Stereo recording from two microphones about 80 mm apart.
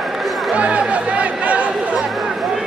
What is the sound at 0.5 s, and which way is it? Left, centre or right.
Chatter, centre.